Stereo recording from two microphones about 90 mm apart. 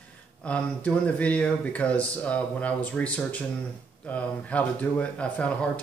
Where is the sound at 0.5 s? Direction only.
15° left (ahead or behind).